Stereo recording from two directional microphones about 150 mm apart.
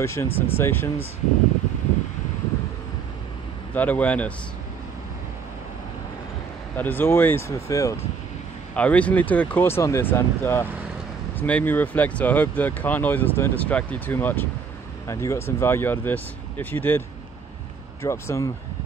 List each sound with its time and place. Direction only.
0.0 s speech: 15° left (ahead or behind)
3.7 s speech: 10° left (ahead or behind)
6.8 s speech: 15° left (ahead or behind)
18.0 s speech: 20° left (ahead or behind)